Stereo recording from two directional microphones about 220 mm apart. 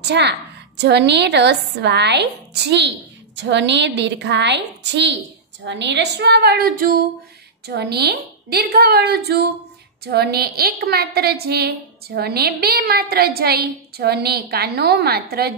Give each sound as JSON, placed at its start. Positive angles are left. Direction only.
{"t": 0.0, "sound": "a woman's voice", "side_deg": -50}